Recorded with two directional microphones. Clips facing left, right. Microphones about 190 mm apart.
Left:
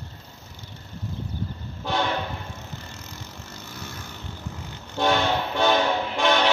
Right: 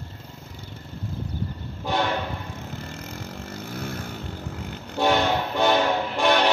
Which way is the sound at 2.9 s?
55° right (ahead or behind).